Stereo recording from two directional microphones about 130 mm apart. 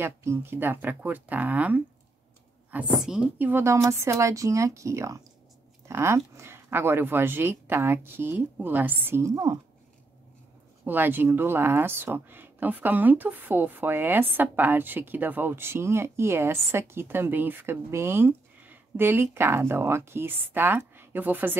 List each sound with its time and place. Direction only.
0.0 s speech: 20° right (ahead or behind)
10.8 s speech: 15° right (ahead or behind)